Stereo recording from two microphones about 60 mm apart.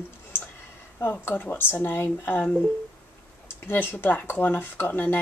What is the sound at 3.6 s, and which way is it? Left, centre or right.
A woman's voice, left.